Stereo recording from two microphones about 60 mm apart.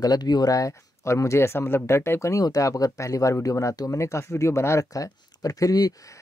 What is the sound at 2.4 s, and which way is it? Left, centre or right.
Speech, left.